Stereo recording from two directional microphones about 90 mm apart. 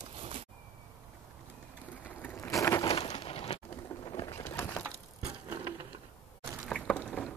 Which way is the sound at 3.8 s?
40° left (ahead or behind).